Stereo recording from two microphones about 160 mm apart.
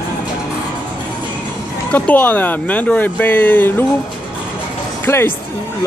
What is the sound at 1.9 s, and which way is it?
Speech, 10° left (ahead or behind).